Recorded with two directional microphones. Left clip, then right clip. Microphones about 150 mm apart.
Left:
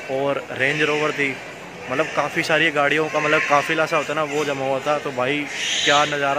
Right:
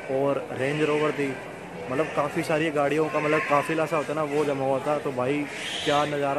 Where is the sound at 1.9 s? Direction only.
10° left (ahead or behind).